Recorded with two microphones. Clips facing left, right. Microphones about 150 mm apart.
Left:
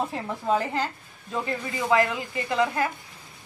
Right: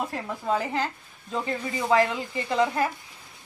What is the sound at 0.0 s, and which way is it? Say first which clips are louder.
Speech: left 1 dB; 5° left (ahead or behind).